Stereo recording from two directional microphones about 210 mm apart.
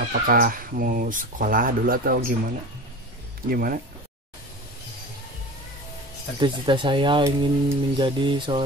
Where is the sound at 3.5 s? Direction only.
45° right (ahead or behind).